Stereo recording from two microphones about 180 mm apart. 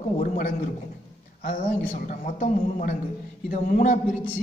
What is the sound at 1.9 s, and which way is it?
A man's voice, 45° left (ahead or behind).